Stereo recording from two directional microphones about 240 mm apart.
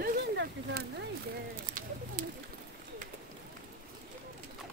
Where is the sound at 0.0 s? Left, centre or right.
Right.